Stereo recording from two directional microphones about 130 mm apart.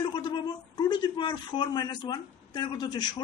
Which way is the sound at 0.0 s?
35° left (ahead or behind).